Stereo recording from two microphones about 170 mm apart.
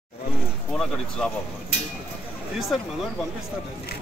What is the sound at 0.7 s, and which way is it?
Speech, 5° left (ahead or behind).